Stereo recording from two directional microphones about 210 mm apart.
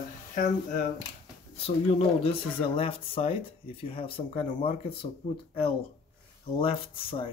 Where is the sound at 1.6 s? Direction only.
30° left (ahead or behind).